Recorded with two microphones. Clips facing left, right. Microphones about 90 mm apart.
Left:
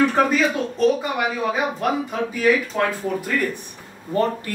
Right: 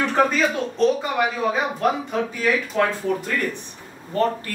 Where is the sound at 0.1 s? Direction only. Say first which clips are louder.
Left 1 dB; 5° left (ahead or behind).